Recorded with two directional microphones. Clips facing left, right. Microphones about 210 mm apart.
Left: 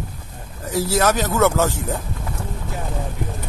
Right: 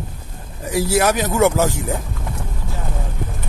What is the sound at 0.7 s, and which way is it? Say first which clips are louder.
Speech: right 2 dB; 15° right (ahead or behind).